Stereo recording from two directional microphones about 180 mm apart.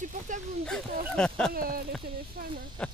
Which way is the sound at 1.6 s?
55° right (ahead or behind).